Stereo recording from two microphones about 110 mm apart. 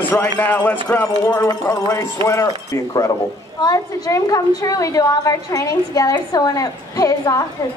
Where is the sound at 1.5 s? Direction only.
30° left (ahead or behind).